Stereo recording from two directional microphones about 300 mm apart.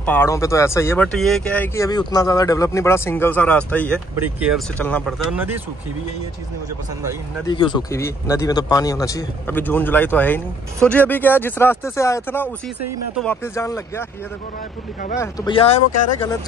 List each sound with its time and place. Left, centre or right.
0.0 s speech: centre
7.4 s a man's voice: centre
15.1 s a man's voice: centre